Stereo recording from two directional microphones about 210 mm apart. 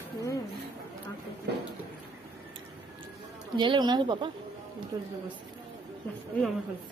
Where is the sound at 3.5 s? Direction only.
20° right (ahead or behind).